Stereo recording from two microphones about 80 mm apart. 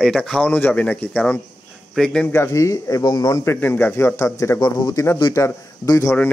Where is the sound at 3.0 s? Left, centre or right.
Left.